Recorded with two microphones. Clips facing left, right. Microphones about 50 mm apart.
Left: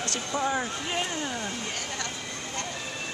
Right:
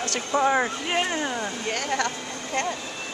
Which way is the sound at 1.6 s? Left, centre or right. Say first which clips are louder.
Right 8 dB; right.